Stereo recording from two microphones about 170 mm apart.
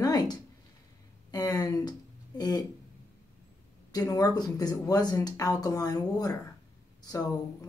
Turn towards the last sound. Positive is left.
turn(degrees=25)  # may be behind; listen again after turning